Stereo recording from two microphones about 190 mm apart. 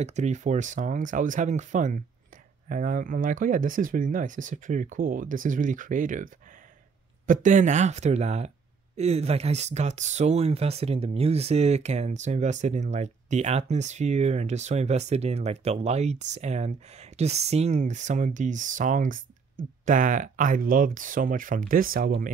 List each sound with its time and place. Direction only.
0.0 s speech: 35° right (ahead or behind)